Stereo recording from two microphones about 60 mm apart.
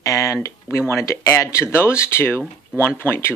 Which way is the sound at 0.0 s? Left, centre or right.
Left.